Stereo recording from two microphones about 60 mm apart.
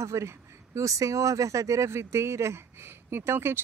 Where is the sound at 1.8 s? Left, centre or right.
Right.